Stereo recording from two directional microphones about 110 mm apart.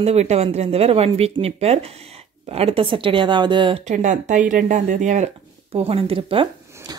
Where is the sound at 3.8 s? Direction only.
90° right.